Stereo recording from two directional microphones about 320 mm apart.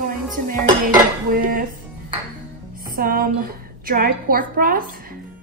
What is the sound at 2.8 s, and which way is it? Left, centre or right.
A woman's voice, right.